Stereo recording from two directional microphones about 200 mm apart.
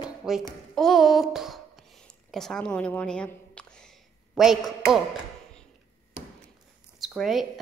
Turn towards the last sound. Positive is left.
turn(degrees=0)  # may be behind; listen again after turning